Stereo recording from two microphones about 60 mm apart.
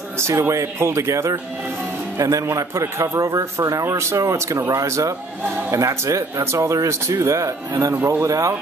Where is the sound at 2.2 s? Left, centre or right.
Right.